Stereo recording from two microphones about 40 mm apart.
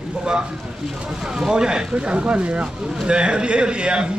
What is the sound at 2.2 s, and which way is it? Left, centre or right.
A man's voice, right.